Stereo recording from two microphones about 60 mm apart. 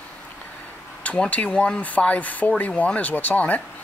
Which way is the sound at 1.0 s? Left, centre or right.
Left.